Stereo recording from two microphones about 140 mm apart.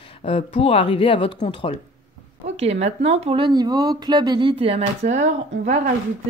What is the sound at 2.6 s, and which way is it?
Speech, 50° right (ahead or behind).